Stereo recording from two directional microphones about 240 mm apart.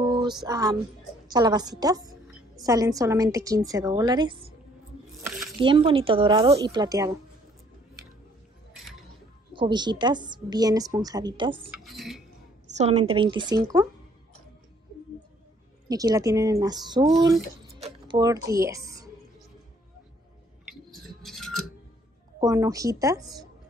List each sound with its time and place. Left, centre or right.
0.0 s music: centre
1.2 s a woman's voice: centre
5.3 s a sound: centre
5.6 s a woman's voice: right
9.5 s a woman's voice: centre
11.7 s speech: centre
12.7 s a woman's voice: right
15.9 s a woman's voice: centre
20.9 s a sound: centre
22.4 s a woman's voice: centre